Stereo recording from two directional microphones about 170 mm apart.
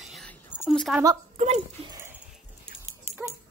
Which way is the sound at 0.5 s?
5° left (ahead or behind).